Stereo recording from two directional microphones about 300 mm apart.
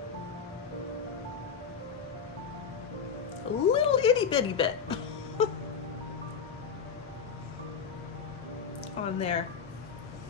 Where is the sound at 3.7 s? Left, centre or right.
Centre.